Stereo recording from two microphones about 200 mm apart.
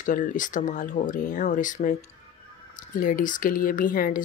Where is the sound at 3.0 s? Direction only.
40° left (ahead or behind).